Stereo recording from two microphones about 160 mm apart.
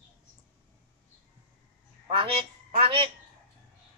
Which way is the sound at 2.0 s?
35° right (ahead or behind).